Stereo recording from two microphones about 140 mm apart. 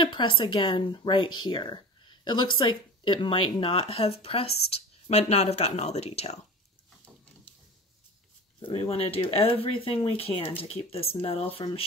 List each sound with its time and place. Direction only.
0.0 s speech: 35° left (ahead or behind)
8.5 s speech: 40° left (ahead or behind)